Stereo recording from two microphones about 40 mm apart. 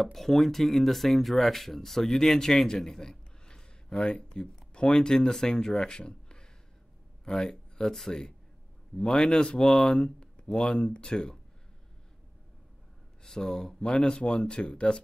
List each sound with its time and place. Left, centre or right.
0.0 s speech: centre
13.2 s speech: centre